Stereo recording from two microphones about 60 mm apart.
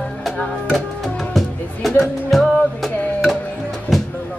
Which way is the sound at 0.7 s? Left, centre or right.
Centre.